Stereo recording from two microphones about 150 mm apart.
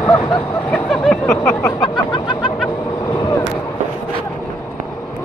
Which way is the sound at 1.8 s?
30° left (ahead or behind).